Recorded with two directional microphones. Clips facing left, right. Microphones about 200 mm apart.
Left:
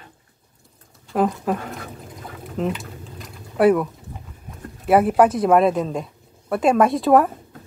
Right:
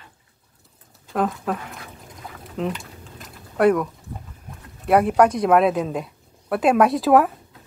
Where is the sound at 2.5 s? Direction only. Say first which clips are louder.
Left 2 dB; centre (ahead or behind).